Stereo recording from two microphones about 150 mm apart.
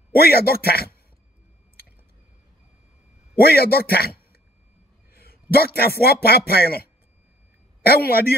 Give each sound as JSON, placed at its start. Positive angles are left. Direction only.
{"t": 0.1, "sound": "speech", "side_deg": 90}
{"t": 3.3, "sound": "a man's voice", "side_deg": 90}